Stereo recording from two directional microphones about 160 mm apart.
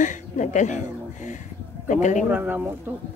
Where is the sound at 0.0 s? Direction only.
50° left (ahead or behind).